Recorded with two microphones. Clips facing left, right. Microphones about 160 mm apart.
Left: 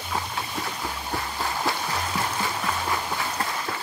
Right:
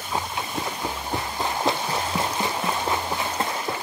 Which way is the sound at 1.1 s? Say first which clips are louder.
Right 1 dB; 20° right (ahead or behind).